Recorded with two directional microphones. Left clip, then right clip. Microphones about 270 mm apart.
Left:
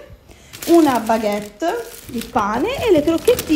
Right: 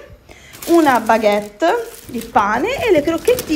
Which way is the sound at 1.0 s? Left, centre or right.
Centre.